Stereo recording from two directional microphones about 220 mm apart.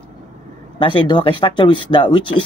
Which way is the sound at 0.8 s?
20° left (ahead or behind).